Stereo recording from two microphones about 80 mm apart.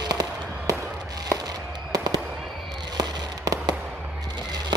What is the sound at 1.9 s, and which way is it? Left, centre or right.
Fireworks, right.